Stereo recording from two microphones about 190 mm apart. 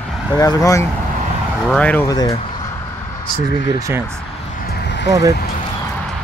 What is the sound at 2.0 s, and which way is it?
Speech, 20° left (ahead or behind).